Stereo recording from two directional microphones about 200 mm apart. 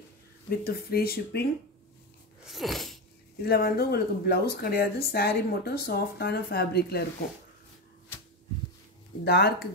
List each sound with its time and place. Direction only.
0.5 s speech: 50° left (ahead or behind)
2.4 s a sound: centre (ahead or behind)
3.4 s speech: 50° left (ahead or behind)
9.2 s speech: 50° left (ahead or behind)